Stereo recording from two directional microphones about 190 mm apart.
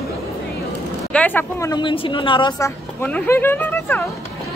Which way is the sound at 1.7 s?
25° left (ahead or behind).